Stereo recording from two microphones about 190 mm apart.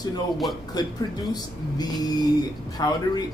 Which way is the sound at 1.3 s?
20° left (ahead or behind).